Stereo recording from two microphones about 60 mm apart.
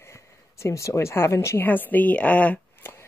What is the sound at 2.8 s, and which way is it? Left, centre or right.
Chopping, left.